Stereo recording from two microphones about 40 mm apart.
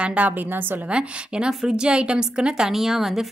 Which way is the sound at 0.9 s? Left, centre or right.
Right.